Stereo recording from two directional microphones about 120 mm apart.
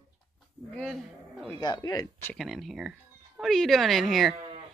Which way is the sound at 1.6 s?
35° left (ahead or behind).